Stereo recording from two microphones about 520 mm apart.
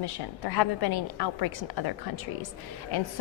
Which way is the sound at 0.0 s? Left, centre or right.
Left.